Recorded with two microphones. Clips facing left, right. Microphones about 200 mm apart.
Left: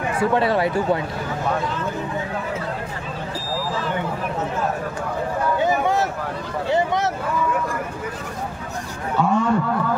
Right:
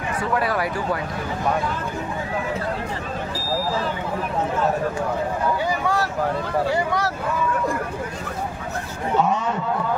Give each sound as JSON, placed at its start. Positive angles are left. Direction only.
{"t": 0.2, "sound": "speech", "side_deg": 25}
{"t": 5.6, "sound": "a sound", "side_deg": 20}
{"t": 6.7, "sound": "speech", "side_deg": 20}
{"t": 9.1, "sound": "speech", "side_deg": -20}